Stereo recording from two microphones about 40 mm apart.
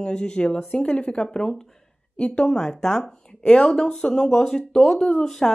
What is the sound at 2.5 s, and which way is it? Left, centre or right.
Speech, centre.